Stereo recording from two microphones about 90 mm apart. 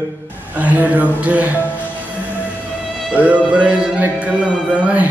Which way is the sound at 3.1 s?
15° right (ahead or behind).